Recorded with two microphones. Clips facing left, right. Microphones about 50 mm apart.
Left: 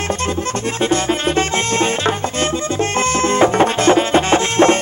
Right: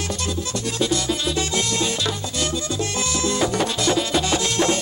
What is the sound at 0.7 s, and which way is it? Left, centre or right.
Music, left.